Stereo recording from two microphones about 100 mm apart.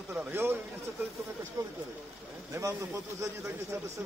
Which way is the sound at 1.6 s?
35° right (ahead or behind).